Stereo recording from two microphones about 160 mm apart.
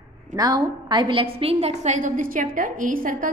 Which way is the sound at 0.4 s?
25° right (ahead or behind).